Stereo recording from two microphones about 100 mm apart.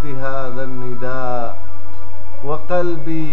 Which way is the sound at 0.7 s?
10° left (ahead or behind).